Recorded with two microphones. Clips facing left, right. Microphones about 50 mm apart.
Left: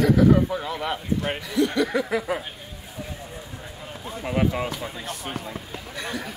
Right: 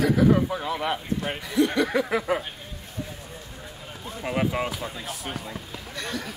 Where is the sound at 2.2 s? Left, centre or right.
Centre.